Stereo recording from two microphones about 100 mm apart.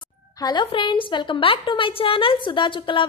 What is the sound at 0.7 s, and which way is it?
A woman's voice, 55° left (ahead or behind).